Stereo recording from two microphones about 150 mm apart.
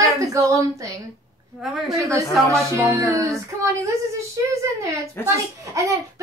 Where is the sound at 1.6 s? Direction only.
Centre (ahead or behind).